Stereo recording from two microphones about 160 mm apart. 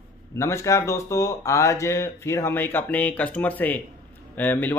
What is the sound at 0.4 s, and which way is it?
Speech, 20° left (ahead or behind).